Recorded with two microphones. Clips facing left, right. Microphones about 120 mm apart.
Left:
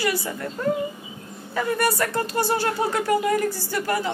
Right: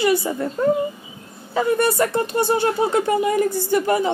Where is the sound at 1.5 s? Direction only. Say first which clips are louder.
Right 4 dB; 25° right (ahead or behind).